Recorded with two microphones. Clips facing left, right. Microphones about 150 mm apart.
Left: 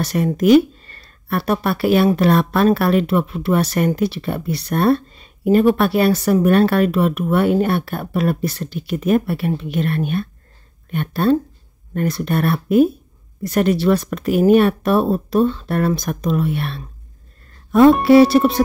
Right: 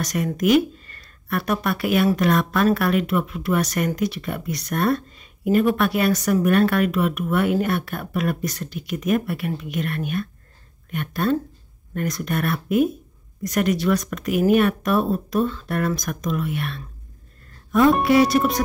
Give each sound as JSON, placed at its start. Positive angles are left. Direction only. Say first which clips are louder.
{"t": 0.0, "sound": "speech", "louder": "left 5 dB", "side_deg": 30}
{"t": 17.6, "sound": "music", "louder": "left 6 dB", "side_deg": 30}
{"t": 18.0, "sound": "speech", "louder": "left 6 dB", "side_deg": 30}